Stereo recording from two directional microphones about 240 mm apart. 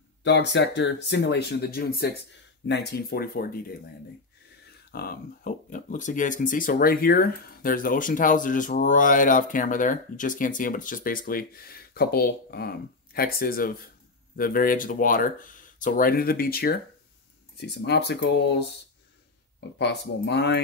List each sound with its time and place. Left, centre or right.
0.2 s speech: left
4.9 s speech: left
19.8 s speech: left